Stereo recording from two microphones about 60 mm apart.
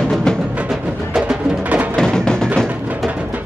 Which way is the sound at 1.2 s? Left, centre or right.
Centre.